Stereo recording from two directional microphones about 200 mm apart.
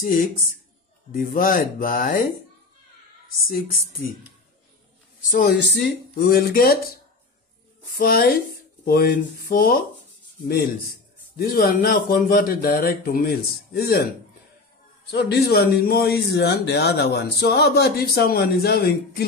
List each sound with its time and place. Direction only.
0.0 s speech: 45° left (ahead or behind)
3.3 s speech: 45° left (ahead or behind)
5.3 s speech: 50° left (ahead or behind)
11.3 s speech: 45° left (ahead or behind)
15.0 s speech: 55° left (ahead or behind)